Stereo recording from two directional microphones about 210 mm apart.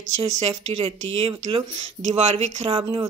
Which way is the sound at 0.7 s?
30° right (ahead or behind).